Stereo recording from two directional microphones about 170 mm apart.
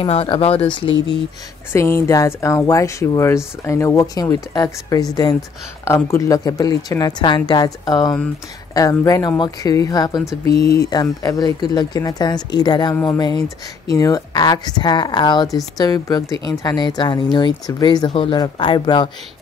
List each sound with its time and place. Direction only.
0.0 s speech: 35° left (ahead or behind)
1.7 s speech: 15° left (ahead or behind)
10.5 s speech: 70° left (ahead or behind)
10.8 s speech: 20° left (ahead or behind)